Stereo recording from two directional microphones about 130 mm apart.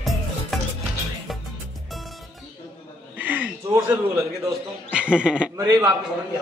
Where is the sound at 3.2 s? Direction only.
15° right (ahead or behind).